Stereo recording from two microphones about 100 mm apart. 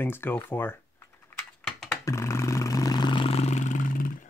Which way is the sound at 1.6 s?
10° left (ahead or behind).